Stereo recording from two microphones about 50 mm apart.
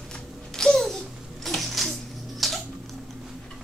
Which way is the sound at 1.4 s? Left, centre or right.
Centre.